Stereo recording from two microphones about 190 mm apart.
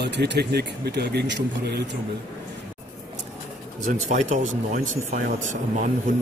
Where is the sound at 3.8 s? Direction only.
40° right (ahead or behind).